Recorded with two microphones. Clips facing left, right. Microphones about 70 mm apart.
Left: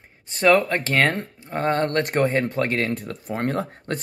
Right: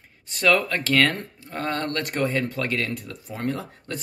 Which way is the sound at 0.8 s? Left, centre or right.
Left.